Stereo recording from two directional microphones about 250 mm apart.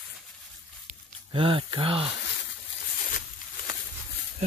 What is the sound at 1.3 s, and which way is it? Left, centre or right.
Speech, right.